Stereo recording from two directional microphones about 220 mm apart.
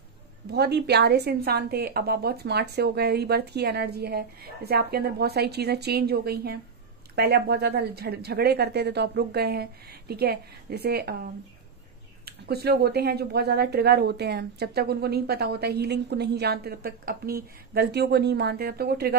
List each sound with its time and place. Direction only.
0.5 s speech: 50° right (ahead or behind)
12.3 s speech: 45° right (ahead or behind)